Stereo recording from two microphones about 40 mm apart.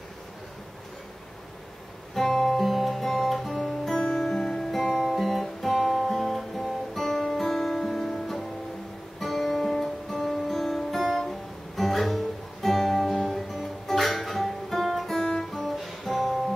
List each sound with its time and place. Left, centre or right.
2.1 s guitar: centre
3.9 s music: centre
5.1 s guitar: centre
7.3 s music: centre
15.1 s guitar: centre
15.5 s music: centre